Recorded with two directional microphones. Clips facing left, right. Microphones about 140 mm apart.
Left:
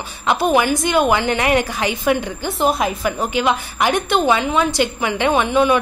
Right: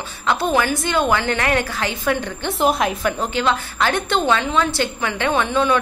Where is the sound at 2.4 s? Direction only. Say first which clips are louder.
Even; centre (ahead or behind).